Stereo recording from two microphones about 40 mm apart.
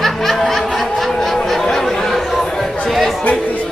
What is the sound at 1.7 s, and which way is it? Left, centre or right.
Speech, centre.